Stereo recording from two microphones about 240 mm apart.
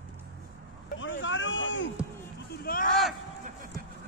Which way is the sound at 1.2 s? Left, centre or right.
Left.